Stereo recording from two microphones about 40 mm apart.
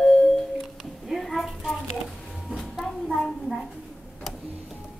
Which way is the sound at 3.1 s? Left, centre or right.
Centre.